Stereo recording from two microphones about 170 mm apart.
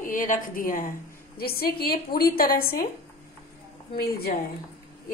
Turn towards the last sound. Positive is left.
turn(degrees=65)  # may be behind; listen again after turning